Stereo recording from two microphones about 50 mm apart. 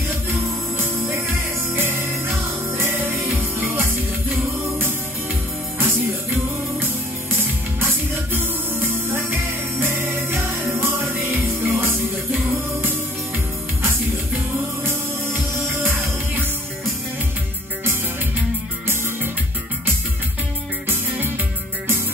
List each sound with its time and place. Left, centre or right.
1.8 s music: right
6.3 s music: right
14.9 s music: right